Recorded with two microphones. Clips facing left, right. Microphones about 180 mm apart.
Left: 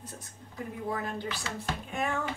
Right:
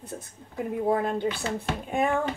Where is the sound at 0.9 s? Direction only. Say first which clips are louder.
Right 9 dB; 55° right (ahead or behind).